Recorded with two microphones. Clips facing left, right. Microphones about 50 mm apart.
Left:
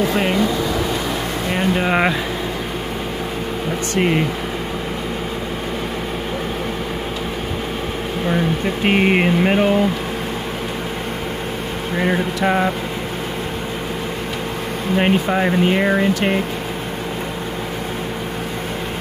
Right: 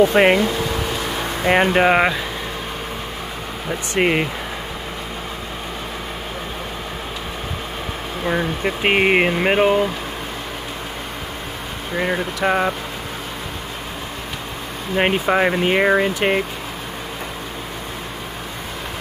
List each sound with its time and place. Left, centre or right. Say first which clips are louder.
0.1 s speech: right 5 dB; right
1.5 s speech: right 5 dB; right
3.9 s speech: even; right
8.3 s a sound: left 1 dB; centre
12.0 s speech: left 2 dB; centre
15.0 s speech: right 1 dB; centre
15.5 s a sound: even; centre